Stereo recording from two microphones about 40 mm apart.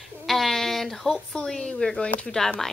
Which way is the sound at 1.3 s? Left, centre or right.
Left.